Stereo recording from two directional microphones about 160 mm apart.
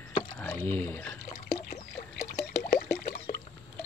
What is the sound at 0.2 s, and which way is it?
Rowboat, 10° left (ahead or behind).